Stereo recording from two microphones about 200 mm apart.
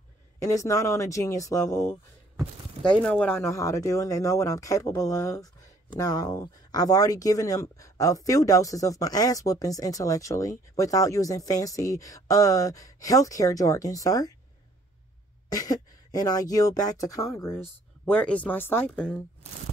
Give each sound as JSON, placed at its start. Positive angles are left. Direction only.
{"t": 0.4, "sound": "speech", "side_deg": 15}
{"t": 15.5, "sound": "speech", "side_deg": 20}